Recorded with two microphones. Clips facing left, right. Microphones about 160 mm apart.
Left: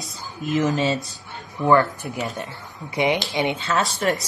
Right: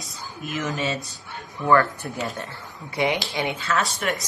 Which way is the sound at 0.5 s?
30° left (ahead or behind).